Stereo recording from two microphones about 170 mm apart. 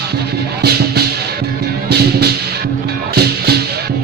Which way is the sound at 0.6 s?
70° right (ahead or behind).